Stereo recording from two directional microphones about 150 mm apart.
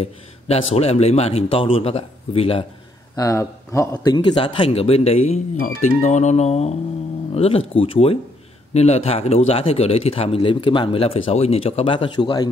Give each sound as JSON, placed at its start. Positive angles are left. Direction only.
{"t": 0.0, "sound": "a man's voice", "side_deg": 45}
{"t": 3.2, "sound": "a man's voice", "side_deg": 20}